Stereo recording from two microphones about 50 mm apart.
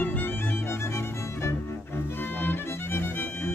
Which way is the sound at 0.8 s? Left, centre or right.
Left.